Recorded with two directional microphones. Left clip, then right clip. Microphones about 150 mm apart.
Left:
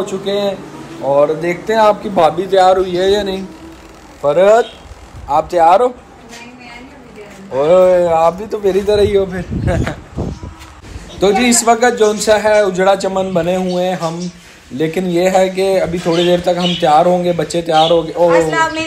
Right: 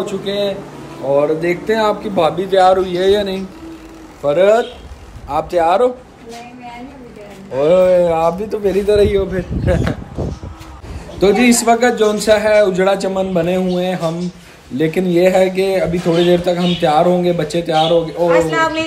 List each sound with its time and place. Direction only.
0.0 s speech: 5° left (ahead or behind)
1.1 s a man's voice: 5° right (ahead or behind)
7.5 s a man's voice: 5° right (ahead or behind)
8.8 s a man's voice: 15° right (ahead or behind)
11.1 s a man's voice: 10° right (ahead or behind)
18.3 s speech: 20° right (ahead or behind)